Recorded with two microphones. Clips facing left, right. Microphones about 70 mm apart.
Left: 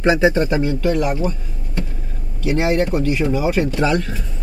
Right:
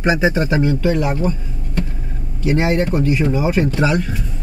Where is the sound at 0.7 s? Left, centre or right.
Right.